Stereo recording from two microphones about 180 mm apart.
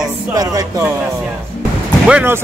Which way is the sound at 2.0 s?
10° right (ahead or behind).